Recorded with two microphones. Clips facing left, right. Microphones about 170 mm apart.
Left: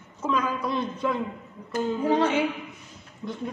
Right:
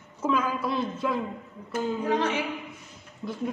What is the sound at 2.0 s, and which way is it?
Speech, 30° left (ahead or behind).